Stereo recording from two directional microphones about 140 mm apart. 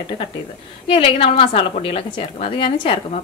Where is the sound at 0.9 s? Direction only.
40° left (ahead or behind).